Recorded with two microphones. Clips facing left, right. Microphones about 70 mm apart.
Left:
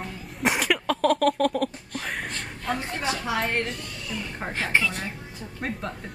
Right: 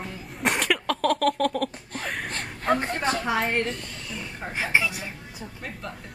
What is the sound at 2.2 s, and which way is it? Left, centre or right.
A woman's voice, right.